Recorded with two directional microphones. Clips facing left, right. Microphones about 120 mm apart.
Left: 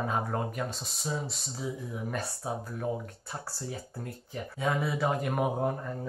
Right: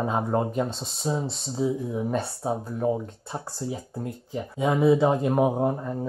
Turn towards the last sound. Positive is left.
turn(degrees=-20)  # may be behind; listen again after turning